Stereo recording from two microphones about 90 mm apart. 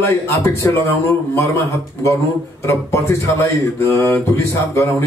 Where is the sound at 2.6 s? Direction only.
30° left (ahead or behind).